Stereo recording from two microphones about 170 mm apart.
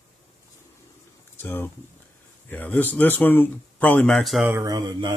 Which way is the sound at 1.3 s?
10° left (ahead or behind).